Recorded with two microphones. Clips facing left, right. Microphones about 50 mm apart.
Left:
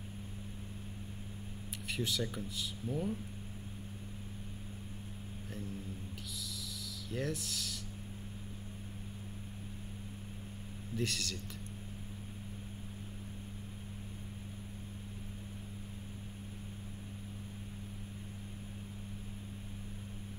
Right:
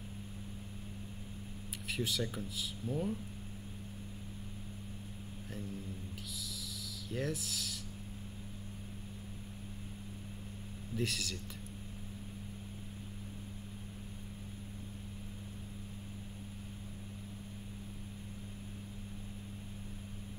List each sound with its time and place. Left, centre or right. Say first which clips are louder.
1.9 s speech: even; centre
7.1 s speech: even; centre
11.0 s speech: even; centre